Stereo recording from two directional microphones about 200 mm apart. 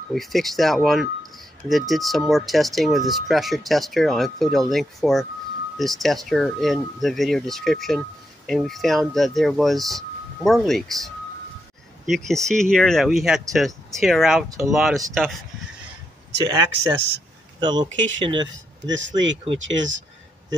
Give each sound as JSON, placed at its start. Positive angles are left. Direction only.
{"t": 0.1, "sound": "speech", "side_deg": 0}
{"t": 12.1, "sound": "speech", "side_deg": 0}
{"t": 16.4, "sound": "speech", "side_deg": -15}
{"t": 18.9, "sound": "speech", "side_deg": -65}